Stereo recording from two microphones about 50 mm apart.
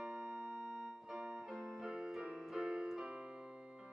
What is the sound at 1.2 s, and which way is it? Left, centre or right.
Music, right.